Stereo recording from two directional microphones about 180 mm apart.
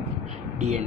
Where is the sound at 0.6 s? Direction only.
40° right (ahead or behind).